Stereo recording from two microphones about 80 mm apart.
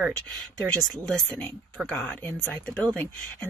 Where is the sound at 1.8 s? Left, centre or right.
Centre.